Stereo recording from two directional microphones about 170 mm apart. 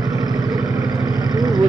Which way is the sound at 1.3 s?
20° right (ahead or behind).